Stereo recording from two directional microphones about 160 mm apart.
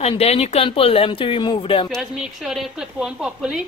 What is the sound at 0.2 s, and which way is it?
Speech, 40° left (ahead or behind).